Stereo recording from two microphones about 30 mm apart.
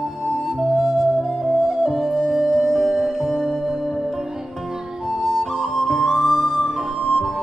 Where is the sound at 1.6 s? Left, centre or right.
Centre.